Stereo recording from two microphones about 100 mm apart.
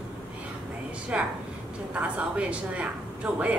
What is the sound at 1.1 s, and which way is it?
A woman's voice, 10° right (ahead or behind).